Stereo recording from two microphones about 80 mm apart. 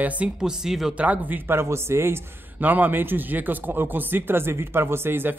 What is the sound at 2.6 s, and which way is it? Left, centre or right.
Speech, right.